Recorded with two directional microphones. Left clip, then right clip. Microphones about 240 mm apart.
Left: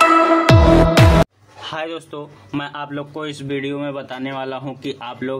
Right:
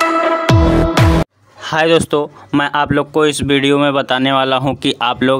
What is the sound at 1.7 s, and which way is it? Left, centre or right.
Speech, right.